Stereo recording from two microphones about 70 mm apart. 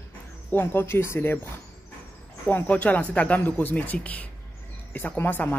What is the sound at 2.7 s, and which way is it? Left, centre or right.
Speech, left.